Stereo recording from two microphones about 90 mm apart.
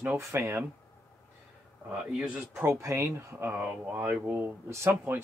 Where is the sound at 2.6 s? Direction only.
30° right (ahead or behind).